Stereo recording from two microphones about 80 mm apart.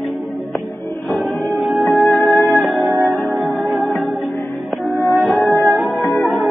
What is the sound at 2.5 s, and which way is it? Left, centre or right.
Music, centre.